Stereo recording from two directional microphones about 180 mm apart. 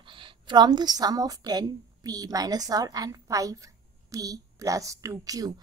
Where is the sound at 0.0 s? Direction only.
30° right (ahead or behind).